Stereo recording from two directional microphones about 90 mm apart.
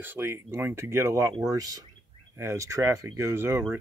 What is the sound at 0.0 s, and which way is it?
Speech, 25° right (ahead or behind).